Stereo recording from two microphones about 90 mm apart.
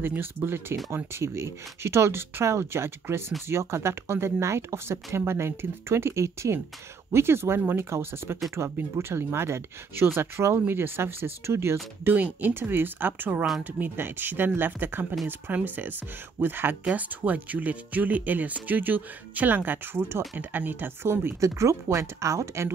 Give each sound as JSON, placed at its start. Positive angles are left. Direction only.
{"t": 0.0, "sound": "speech", "side_deg": -25}